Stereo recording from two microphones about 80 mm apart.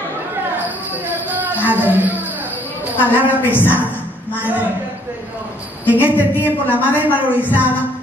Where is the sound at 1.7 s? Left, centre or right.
Right.